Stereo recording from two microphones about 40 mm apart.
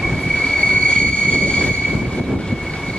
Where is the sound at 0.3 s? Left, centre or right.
Centre.